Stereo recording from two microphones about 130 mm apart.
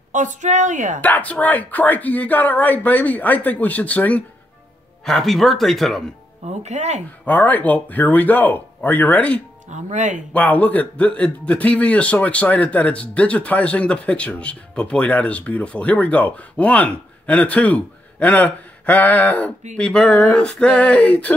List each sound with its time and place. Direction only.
0.1 s a woman's voice: 75° right (ahead or behind)
1.0 s speech: 10° left (ahead or behind)
6.4 s speech: 60° right (ahead or behind)
7.2 s speech: 10° left (ahead or behind)
9.7 s a woman's voice: 65° right (ahead or behind)
10.3 s speech: 10° left (ahead or behind)